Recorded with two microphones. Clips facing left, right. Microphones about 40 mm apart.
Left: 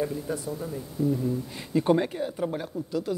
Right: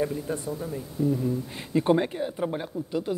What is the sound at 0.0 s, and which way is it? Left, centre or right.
Speech, centre.